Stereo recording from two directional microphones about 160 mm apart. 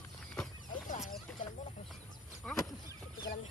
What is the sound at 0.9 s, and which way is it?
Chicken, 55° left (ahead or behind).